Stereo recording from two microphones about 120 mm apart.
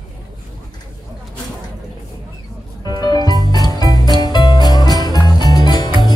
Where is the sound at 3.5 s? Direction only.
30° left (ahead or behind).